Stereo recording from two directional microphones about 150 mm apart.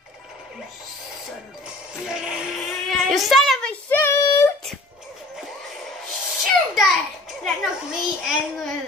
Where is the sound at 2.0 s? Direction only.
5° right (ahead or behind).